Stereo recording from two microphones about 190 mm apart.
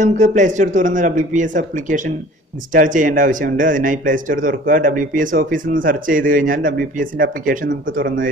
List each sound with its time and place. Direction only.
0.0 s speech: 40° right (ahead or behind)